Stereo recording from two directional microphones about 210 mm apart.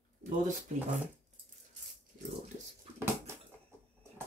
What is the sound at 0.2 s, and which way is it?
Speech, 40° right (ahead or behind).